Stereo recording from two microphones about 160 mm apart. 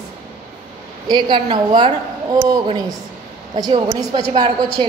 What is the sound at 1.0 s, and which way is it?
A woman's voice, 25° right (ahead or behind).